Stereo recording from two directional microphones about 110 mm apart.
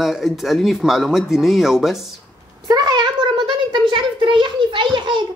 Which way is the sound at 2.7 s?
40° right (ahead or behind).